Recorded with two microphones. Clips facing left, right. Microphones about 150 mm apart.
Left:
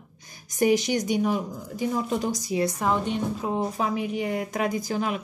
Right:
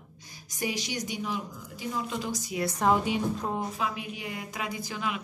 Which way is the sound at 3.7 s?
45° left (ahead or behind).